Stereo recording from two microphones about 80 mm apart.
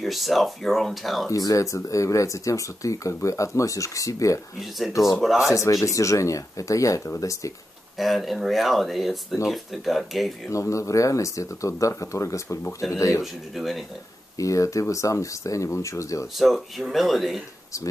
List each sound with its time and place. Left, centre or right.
0.0 s speech: centre
1.3 s speech: left
4.6 s speech: centre
5.5 s speech: left
8.0 s speech: centre
10.5 s speech: left
13.2 s speech: centre
14.4 s speech: left
16.3 s speech: centre